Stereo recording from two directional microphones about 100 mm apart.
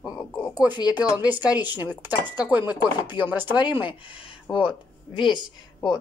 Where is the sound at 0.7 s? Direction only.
45° left (ahead or behind).